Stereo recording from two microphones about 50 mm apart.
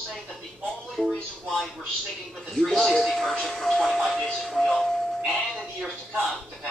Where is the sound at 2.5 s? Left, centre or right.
Centre.